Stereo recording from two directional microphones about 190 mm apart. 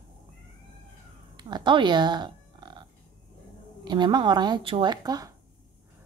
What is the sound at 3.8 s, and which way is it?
Speech, 25° right (ahead or behind).